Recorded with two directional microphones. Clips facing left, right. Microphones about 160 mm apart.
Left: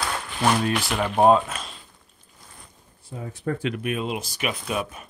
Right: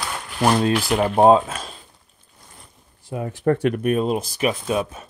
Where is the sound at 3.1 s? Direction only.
70° right (ahead or behind); by 5.0 s 35° right (ahead or behind).